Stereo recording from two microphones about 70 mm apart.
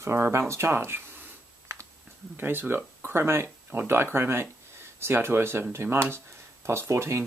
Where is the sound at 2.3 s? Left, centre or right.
Right.